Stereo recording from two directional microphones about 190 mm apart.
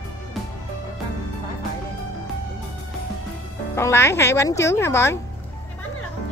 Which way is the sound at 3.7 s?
15° left (ahead or behind).